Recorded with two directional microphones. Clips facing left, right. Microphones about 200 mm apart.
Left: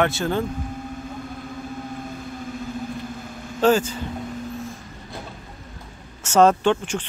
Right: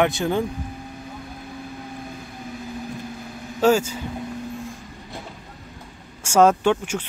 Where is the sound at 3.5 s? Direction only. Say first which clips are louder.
Even; 10° right (ahead or behind).